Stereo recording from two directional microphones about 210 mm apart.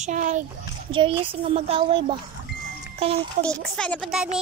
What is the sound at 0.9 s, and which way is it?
A child's voice, 25° right (ahead or behind).